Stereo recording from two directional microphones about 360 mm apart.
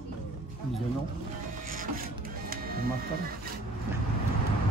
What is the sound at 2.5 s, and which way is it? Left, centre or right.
Printer, right.